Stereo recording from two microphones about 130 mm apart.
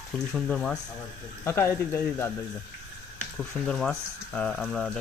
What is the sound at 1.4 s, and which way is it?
Speech, 20° left (ahead or behind).